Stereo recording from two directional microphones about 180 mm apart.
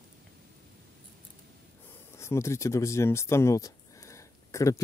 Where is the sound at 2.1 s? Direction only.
15° left (ahead or behind).